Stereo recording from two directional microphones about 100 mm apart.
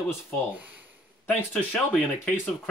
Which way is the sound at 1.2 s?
10° left (ahead or behind).